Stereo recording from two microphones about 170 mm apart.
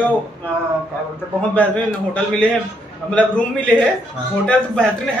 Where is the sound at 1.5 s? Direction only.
10° left (ahead or behind).